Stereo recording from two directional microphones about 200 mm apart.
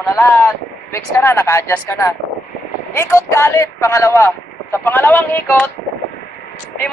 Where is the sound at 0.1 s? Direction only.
10° left (ahead or behind).